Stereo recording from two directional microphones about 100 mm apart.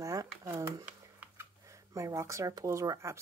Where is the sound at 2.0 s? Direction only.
30° right (ahead or behind).